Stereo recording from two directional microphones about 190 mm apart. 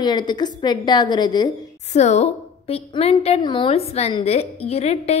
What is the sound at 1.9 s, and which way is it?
A woman's voice, 35° left (ahead or behind).